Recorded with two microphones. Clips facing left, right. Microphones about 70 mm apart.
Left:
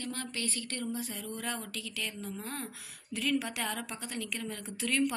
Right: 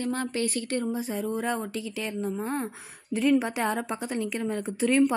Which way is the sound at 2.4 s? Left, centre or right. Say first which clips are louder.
Right 10 dB; right.